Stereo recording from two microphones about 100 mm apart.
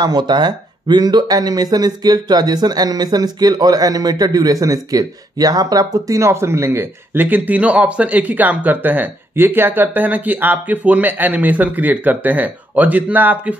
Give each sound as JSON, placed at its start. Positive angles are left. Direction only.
{"t": 0.0, "sound": "speech", "side_deg": -45}